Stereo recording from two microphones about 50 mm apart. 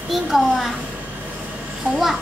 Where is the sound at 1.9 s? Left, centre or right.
Right.